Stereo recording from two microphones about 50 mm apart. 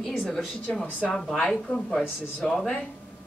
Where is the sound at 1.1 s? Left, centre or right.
Centre.